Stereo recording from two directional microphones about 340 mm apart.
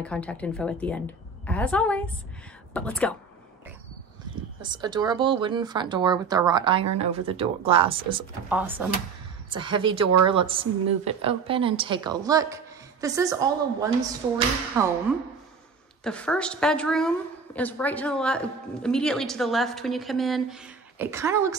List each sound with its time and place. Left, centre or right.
0.0 s speech: centre
4.6 s speech: centre
8.5 s speech: centre
9.9 s speech: right
10.2 s speech: centre
16.0 s speech: centre